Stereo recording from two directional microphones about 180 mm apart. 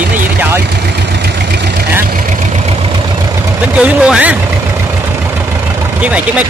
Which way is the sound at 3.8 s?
5° right (ahead or behind).